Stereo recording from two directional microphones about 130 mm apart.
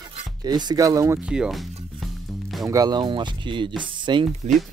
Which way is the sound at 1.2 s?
5° right (ahead or behind).